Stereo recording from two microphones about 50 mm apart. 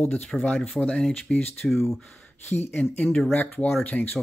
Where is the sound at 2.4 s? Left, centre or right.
Left.